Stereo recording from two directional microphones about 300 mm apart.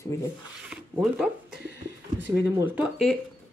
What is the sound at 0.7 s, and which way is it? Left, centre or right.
Speech, centre.